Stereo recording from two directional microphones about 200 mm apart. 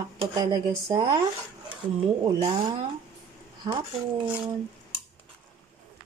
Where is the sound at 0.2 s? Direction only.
20° right (ahead or behind).